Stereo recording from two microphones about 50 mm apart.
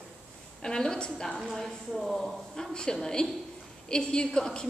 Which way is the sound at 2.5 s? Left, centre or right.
Centre.